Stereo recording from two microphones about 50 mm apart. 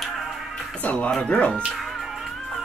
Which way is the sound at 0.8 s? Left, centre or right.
Left.